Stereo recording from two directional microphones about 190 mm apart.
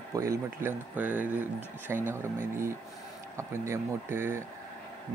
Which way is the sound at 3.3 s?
15° right (ahead or behind).